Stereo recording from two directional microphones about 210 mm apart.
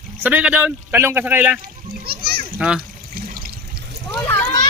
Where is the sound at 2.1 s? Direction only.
50° right (ahead or behind).